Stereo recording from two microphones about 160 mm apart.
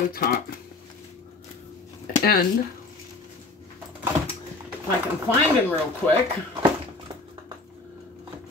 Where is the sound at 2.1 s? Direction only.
65° left (ahead or behind).